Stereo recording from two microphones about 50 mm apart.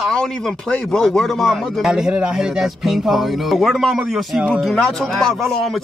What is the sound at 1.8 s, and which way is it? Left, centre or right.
Speech, centre.